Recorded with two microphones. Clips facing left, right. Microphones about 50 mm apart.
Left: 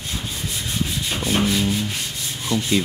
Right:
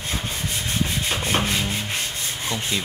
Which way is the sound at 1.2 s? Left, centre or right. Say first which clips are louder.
Left 4 dB; right.